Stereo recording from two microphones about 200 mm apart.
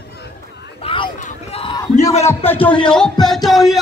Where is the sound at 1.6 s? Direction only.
20° left (ahead or behind).